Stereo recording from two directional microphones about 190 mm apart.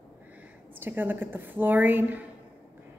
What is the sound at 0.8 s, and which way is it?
A woman's voice, 10° right (ahead or behind).